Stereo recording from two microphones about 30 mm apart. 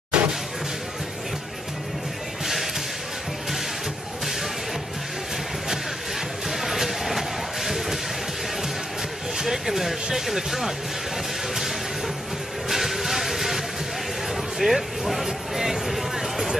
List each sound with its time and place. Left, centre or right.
0.1 s basketball bounce: right
2.4 s basketball bounce: centre
6.5 s a sound: centre
9.4 s a sound: centre
10.1 s speech: centre
12.6 s music: centre